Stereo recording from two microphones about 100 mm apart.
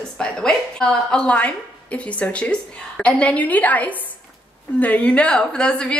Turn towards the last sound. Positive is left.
turn(degrees=10)  # may be behind; listen again after turning